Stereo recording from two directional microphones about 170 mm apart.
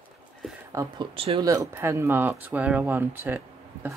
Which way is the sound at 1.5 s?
15° right (ahead or behind).